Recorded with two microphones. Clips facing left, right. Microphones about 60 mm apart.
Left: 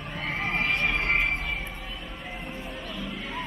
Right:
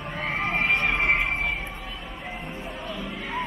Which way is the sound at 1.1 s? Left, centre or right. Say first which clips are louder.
Right 2 dB; centre.